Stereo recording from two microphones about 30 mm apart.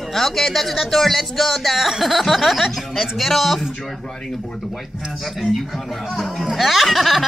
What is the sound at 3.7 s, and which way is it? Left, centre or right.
Speech, centre.